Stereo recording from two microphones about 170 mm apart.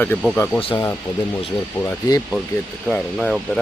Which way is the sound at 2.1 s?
20° left (ahead or behind).